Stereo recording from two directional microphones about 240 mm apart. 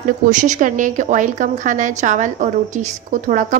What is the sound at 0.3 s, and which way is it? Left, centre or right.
A woman's voice, right.